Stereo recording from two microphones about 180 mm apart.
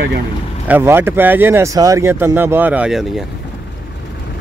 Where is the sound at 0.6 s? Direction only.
10° right (ahead or behind).